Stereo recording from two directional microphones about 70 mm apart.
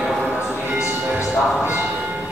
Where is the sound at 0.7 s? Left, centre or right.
Centre.